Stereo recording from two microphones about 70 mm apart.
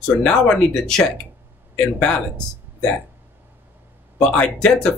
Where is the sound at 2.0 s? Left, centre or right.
Centre.